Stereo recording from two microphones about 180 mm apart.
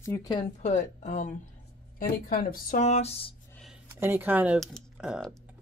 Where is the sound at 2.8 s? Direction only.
35° left (ahead or behind).